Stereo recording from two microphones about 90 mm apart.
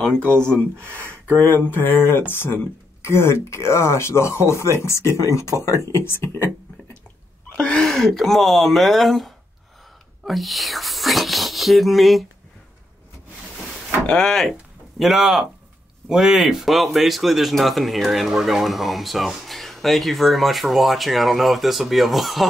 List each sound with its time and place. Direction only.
0.3 s speech: 10° left (ahead or behind)
1.3 s speech: 20° left (ahead or behind)
7.5 s speech: 10° left (ahead or behind)
14.0 s speech: 5° left (ahead or behind)